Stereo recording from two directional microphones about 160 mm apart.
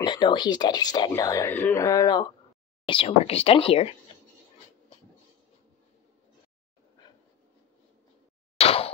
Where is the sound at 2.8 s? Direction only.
35° left (ahead or behind).